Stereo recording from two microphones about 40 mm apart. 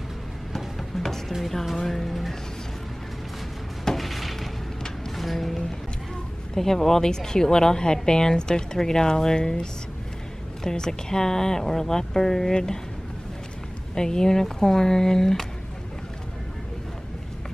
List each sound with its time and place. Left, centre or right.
0.5 s music: centre
3.8 s a sound: centre
5.1 s music: centre
6.5 s speech: centre
13.9 s speech: centre